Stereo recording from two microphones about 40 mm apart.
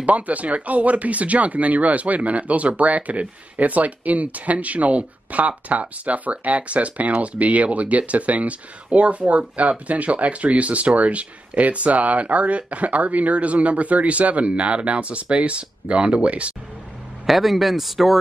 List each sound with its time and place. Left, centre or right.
0.0 s speech: right
17.3 s speech: centre